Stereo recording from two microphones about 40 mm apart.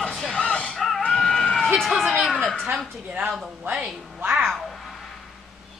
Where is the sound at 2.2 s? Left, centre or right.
Centre.